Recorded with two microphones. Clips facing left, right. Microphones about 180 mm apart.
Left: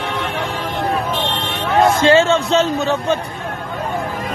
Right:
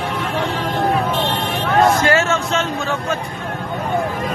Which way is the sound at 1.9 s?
30° left (ahead or behind).